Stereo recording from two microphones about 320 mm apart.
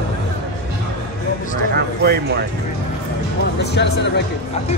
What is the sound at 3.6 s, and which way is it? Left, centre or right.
Music, left.